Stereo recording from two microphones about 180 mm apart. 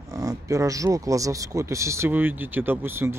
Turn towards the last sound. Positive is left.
turn(degrees=-15)  # may be behind; listen again after turning